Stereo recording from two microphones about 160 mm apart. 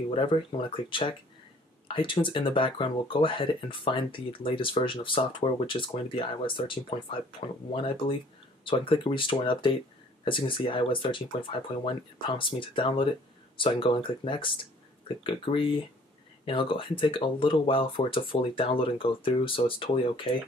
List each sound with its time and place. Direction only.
0.1 s speech: 35° left (ahead or behind)